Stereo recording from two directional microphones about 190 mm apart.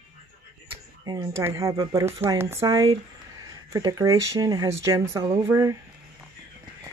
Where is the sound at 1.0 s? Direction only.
20° right (ahead or behind).